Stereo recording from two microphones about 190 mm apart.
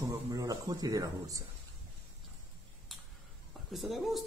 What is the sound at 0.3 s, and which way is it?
Speech, 20° right (ahead or behind).